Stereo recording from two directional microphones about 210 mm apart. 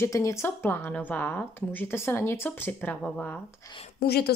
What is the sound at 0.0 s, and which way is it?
Speech, 15° left (ahead or behind).